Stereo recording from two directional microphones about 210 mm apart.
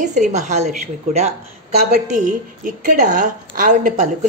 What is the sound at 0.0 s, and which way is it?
A woman's voice, 35° right (ahead or behind).